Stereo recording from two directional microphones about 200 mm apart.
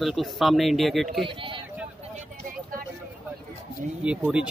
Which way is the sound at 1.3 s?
25° right (ahead or behind).